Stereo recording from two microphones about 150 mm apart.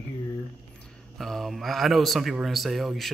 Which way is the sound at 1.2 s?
Centre (ahead or behind).